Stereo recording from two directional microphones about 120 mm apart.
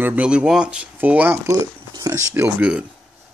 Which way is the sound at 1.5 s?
25° right (ahead or behind).